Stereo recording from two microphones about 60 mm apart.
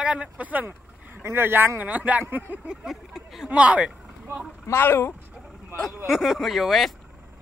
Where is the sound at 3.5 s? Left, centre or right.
Right.